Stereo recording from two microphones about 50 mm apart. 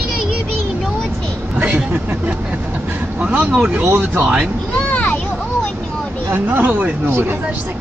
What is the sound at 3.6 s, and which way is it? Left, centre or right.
Speech, right.